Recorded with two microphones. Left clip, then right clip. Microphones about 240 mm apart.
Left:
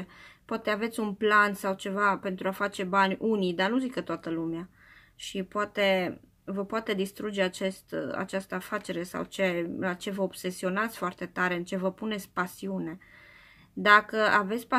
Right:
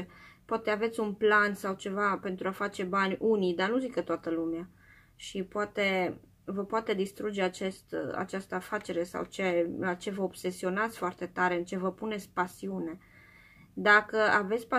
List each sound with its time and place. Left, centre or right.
0.5 s speech: left